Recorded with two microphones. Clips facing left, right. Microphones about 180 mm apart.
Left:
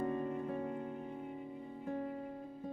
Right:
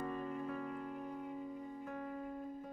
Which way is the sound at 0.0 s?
30° left (ahead or behind).